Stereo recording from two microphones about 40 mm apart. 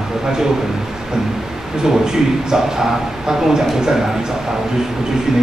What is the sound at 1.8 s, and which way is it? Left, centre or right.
Speech, centre.